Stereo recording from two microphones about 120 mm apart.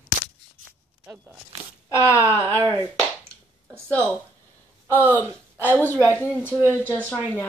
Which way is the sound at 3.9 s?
15° left (ahead or behind).